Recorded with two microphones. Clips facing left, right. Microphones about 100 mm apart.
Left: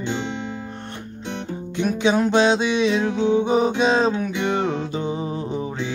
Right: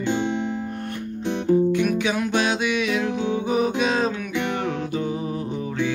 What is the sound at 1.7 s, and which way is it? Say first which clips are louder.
Music: left 1 dB; 25° left (ahead or behind).